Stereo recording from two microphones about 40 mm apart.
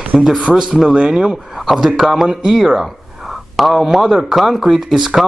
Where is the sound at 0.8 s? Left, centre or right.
Right.